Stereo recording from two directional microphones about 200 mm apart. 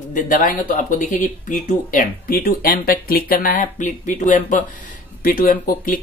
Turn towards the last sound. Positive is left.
turn(degrees=45)  # may be behind; listen again after turning